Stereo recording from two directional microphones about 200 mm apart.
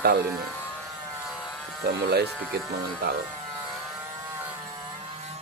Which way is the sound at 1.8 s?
55° right (ahead or behind).